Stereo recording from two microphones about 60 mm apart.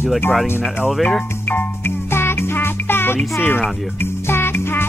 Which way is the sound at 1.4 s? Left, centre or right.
Left.